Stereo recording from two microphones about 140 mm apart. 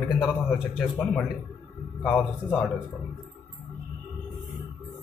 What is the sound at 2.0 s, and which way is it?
Speech, 10° left (ahead or behind).